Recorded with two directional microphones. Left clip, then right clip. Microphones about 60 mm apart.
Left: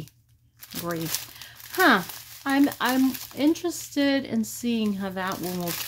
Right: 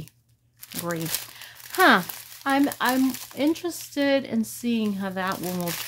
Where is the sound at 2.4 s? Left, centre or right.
Centre.